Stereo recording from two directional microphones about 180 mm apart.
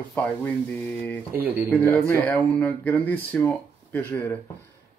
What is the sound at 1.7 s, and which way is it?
Speech, 10° left (ahead or behind).